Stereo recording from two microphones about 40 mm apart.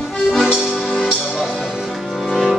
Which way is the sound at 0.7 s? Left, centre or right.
Centre.